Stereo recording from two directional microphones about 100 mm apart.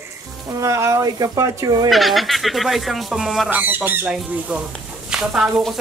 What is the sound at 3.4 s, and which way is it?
Speech, 20° right (ahead or behind).